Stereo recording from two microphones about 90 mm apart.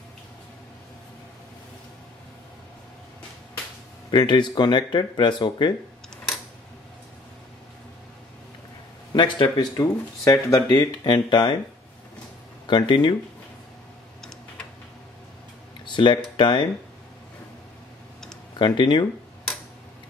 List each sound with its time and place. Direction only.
4.1 s speech: 55° left (ahead or behind)
9.1 s speech: 60° left (ahead or behind)
12.6 s speech: 60° left (ahead or behind)
15.8 s a sound: 60° left (ahead or behind)
16.3 s speech: 60° left (ahead or behind)
18.6 s speech: 60° left (ahead or behind)